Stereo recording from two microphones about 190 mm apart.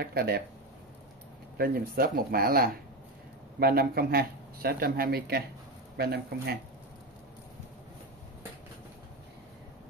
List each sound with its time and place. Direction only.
0.0 s speech: 55° right (ahead or behind)
1.6 s speech: 50° right (ahead or behind)